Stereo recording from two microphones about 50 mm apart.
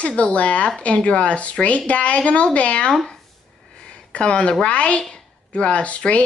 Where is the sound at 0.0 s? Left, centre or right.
Left.